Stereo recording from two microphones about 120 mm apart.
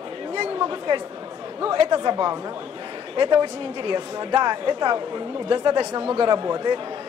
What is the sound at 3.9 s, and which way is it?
Speech, 30° right (ahead or behind).